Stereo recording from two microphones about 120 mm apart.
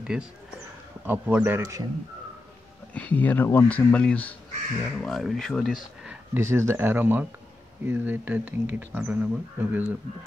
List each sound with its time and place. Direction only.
0.1 s speech: 5° right (ahead or behind)
1.6 s speech: 25° right (ahead or behind)
2.9 s speech: 15° left (ahead or behind)
6.3 s speech: 20° right (ahead or behind)